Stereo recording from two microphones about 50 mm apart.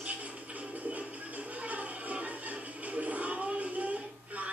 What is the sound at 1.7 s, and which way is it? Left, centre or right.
Music, right.